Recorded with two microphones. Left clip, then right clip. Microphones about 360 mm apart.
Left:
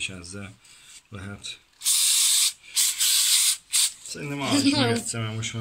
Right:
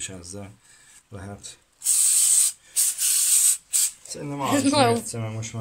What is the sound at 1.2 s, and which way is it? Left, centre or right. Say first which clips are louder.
Speech: left 3 dB; right.